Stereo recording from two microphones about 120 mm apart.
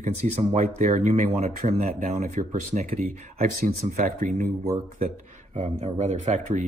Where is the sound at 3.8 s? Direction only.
90° right.